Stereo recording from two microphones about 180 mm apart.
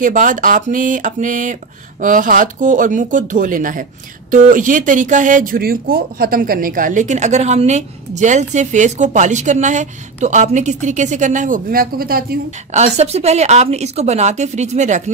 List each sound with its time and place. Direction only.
0.0 s speech: 45° right (ahead or behind)
12.7 s a woman's voice: 40° right (ahead or behind)